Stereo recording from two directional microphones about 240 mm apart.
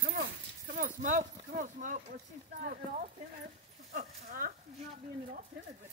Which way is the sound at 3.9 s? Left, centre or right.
Right.